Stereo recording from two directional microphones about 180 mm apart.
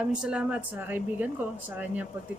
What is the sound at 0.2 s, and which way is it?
Speech, 5° right (ahead or behind).